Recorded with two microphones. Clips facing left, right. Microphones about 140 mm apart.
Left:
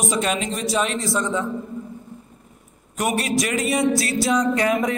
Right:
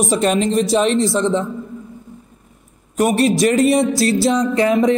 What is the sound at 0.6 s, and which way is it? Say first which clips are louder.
Speech: right 8 dB; 30° right (ahead or behind).